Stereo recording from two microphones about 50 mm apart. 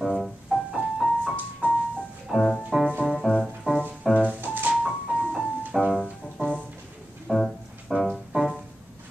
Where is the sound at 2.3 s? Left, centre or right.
Centre.